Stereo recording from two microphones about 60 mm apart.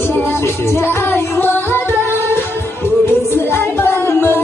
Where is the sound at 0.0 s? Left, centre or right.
Left.